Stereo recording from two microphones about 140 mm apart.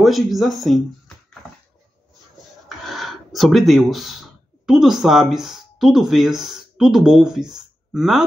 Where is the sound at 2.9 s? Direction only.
Centre (ahead or behind).